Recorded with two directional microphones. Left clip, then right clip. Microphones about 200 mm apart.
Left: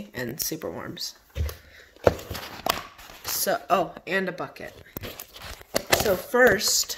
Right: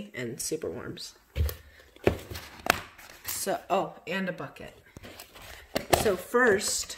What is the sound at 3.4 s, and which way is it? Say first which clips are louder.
Speech: left 5 dB; 5° left (ahead or behind).